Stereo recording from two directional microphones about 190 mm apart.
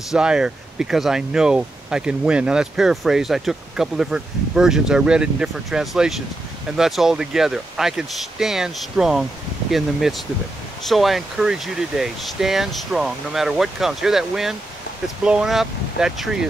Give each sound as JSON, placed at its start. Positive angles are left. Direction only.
{"t": 0.1, "sound": "speech", "side_deg": -5}